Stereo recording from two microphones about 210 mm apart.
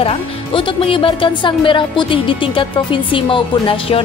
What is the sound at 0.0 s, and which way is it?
Speech, 25° left (ahead or behind).